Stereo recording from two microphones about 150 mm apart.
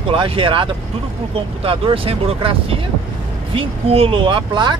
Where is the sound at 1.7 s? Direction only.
40° right (ahead or behind).